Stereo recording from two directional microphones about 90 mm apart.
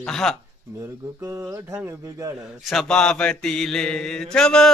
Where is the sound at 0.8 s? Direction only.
25° right (ahead or behind).